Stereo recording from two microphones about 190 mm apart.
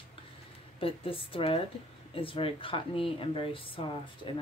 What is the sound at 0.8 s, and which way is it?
Speech, 30° left (ahead or behind).